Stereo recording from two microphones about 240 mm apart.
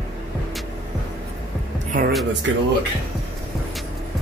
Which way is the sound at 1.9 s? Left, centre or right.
Right.